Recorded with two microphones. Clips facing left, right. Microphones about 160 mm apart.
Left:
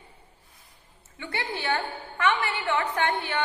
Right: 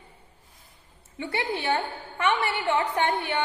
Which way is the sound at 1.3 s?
25° right (ahead or behind).